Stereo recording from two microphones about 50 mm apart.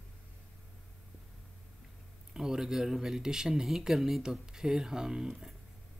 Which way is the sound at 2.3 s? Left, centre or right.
Centre.